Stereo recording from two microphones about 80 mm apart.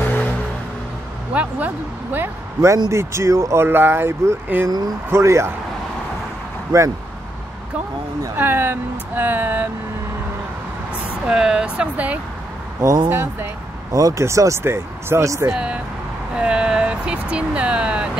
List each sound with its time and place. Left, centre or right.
0.0 s music: left
1.3 s speech: centre
2.6 s speech: right
2.9 s speech: right
6.7 s speech: right
8.4 s speech: right
11.2 s speech: centre
13.1 s speech: right
13.9 s speech: right
15.5 s speech: centre